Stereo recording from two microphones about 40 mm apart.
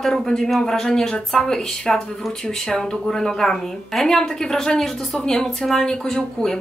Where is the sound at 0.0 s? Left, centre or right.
Centre.